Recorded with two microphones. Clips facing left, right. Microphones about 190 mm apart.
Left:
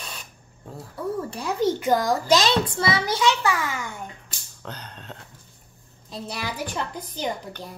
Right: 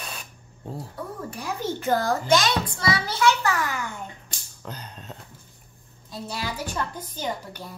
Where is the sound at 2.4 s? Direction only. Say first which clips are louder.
Left 4 dB; 25° left (ahead or behind).